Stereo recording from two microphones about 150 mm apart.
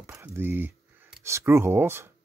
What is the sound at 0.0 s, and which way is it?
Speech, 15° right (ahead or behind).